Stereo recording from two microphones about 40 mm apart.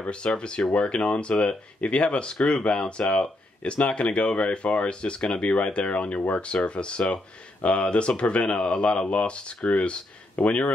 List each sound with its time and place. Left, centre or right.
0.0 s speech: left